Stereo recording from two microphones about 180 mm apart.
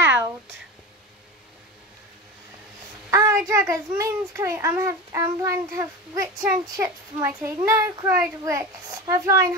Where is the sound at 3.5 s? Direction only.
15° right (ahead or behind).